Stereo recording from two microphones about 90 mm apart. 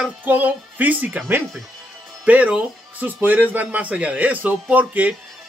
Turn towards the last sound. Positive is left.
turn(degrees=-15)  # may be behind; listen again after turning